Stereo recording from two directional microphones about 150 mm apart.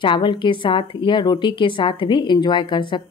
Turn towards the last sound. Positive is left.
turn(degrees=30)  # may be behind; listen again after turning